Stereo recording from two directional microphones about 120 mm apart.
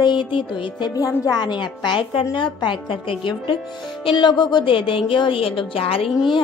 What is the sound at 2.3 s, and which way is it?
Speech, 40° left (ahead or behind).